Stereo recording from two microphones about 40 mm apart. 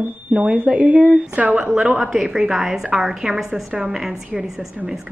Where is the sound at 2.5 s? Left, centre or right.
Centre.